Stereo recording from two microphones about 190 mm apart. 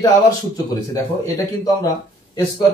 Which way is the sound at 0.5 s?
20° left (ahead or behind).